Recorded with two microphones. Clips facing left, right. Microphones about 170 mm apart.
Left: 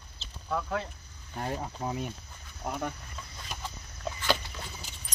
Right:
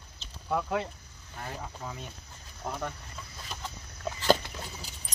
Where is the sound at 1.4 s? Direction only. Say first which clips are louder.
Left 6 dB; 40° left (ahead or behind).